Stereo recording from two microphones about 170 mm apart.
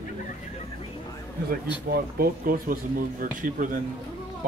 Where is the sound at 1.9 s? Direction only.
60° right (ahead or behind).